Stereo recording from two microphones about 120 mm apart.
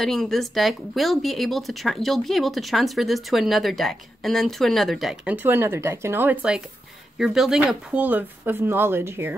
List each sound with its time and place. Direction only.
0.0 s speech: centre (ahead or behind)
5.3 s speech: 15° right (ahead or behind)